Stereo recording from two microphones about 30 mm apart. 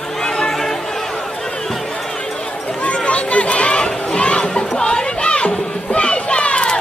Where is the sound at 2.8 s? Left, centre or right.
Left.